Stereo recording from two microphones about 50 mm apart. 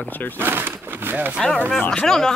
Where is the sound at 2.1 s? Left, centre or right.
Centre.